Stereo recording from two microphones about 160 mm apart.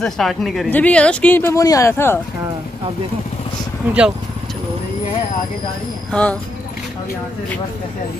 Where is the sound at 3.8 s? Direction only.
10° right (ahead or behind).